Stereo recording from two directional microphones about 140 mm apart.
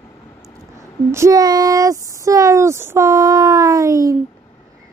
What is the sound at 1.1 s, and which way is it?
Speech, 25° right (ahead or behind).